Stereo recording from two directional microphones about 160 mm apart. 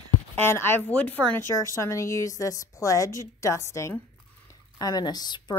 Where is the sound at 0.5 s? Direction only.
15° left (ahead or behind).